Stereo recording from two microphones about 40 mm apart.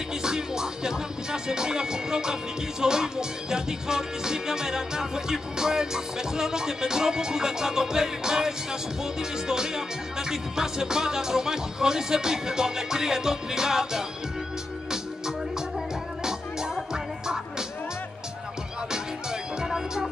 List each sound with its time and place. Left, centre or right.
0.2 s music: centre
16.3 s music: centre
19.6 s music: centre